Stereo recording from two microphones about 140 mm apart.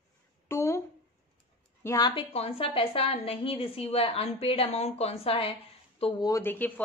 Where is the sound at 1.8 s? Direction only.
25° left (ahead or behind).